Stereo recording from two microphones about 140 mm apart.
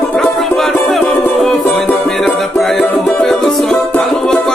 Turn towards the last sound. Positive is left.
turn(degrees=0)  # may be behind; listen again after turning